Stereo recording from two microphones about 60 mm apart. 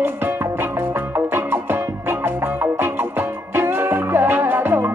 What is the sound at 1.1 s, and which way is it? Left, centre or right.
Music, right.